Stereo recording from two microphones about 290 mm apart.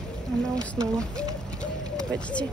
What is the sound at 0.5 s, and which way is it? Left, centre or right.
Speech, centre.